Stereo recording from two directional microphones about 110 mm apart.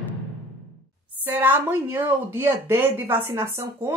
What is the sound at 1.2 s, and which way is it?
Speech, 20° right (ahead or behind).